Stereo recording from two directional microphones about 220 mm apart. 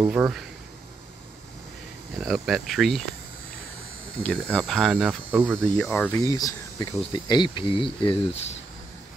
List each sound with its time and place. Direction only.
0.0 s speech: 5° right (ahead or behind)
2.1 s speech: centre (ahead or behind)
4.2 s speech: 5° left (ahead or behind)
5.6 s speech: 5° left (ahead or behind); by 8.2 s 20° left (ahead or behind)